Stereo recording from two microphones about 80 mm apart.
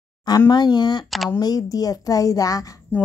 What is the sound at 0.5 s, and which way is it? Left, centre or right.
Speech, left.